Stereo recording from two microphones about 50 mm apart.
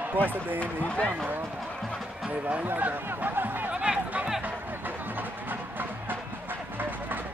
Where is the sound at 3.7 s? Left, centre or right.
Centre.